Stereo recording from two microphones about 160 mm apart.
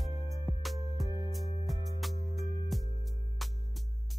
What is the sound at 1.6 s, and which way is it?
Music, centre (ahead or behind).